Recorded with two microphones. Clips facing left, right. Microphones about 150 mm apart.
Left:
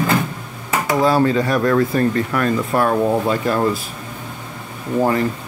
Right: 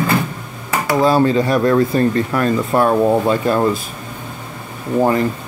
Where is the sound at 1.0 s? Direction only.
25° right (ahead or behind).